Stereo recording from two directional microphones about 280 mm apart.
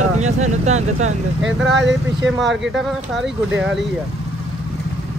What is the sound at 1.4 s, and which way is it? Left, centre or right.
Speech, right.